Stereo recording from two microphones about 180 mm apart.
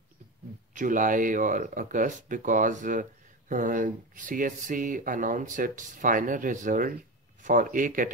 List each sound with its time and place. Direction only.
0.7 s speech: 45° right (ahead or behind)